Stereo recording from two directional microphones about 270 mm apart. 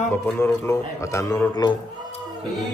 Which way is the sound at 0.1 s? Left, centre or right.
Centre.